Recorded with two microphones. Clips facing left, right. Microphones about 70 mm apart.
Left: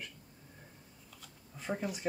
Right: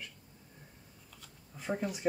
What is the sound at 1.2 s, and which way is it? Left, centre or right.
Shuffling cards, centre.